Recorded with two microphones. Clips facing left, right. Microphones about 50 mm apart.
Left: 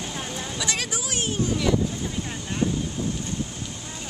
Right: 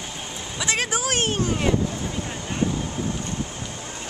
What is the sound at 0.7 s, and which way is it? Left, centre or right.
Speech, right.